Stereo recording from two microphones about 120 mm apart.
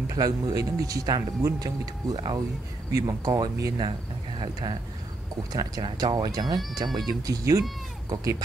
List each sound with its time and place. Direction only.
0.1 s speech: 30° right (ahead or behind)
5.5 s speech: 40° right (ahead or behind)